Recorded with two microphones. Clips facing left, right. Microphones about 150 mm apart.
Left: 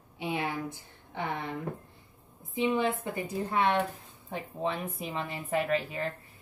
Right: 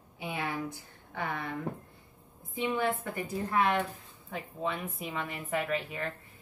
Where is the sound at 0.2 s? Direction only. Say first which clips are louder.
Left 2 dB; 25° left (ahead or behind).